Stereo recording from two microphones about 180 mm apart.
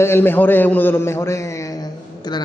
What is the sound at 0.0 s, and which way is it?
A man's voice, 10° left (ahead or behind).